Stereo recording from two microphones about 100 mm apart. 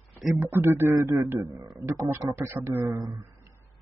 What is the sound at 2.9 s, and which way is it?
Speech, 40° right (ahead or behind).